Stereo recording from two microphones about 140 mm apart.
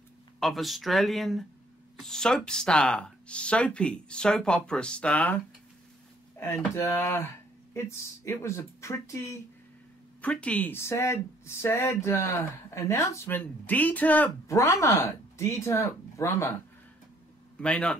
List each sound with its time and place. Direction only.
0.4 s speech: centre (ahead or behind); by 9.4 s 20° left (ahead or behind)
10.2 s speech: 10° left (ahead or behind)
17.6 s speech: 5° left (ahead or behind)